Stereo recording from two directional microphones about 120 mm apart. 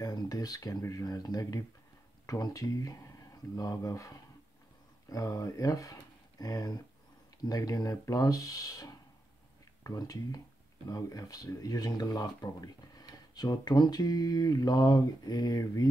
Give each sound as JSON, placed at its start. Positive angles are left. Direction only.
{"t": 0.0, "sound": "speech", "side_deg": 30}